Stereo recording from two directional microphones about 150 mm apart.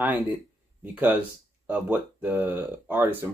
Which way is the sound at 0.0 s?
10° right (ahead or behind).